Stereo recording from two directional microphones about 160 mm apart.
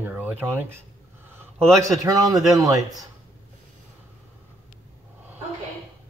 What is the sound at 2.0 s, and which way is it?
Speech, 20° right (ahead or behind).